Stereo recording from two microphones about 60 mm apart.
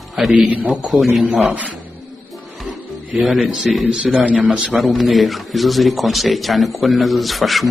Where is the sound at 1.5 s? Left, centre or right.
Right.